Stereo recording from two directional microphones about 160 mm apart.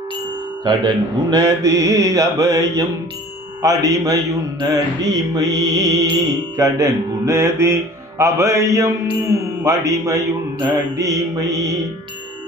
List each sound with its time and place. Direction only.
0.7 s music: 25° right (ahead or behind)
6.5 s speech: 20° right (ahead or behind)
11.0 s music: 20° right (ahead or behind)